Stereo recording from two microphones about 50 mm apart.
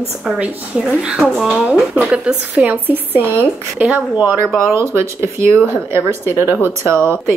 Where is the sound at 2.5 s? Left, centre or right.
Right.